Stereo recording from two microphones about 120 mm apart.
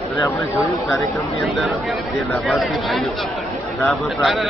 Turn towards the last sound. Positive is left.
turn(degrees=0)  # may be behind; listen again after turning